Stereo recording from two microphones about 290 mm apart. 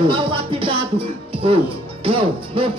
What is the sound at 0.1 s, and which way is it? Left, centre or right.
Music, centre.